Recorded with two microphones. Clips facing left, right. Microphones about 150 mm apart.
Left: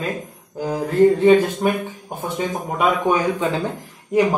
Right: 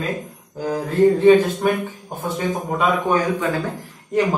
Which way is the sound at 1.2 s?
20° left (ahead or behind).